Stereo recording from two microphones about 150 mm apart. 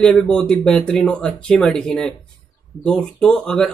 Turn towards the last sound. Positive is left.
turn(degrees=5)  # may be behind; listen again after turning